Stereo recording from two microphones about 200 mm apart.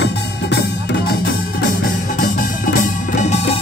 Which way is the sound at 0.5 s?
55° left (ahead or behind).